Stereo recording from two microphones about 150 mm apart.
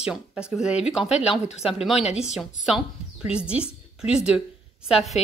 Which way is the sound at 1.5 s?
40° left (ahead or behind).